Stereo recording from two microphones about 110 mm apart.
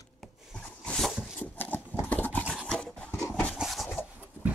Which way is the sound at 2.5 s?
Centre (ahead or behind).